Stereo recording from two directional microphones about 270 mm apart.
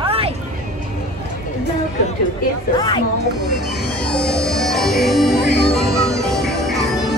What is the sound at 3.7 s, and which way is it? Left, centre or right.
Speech, centre.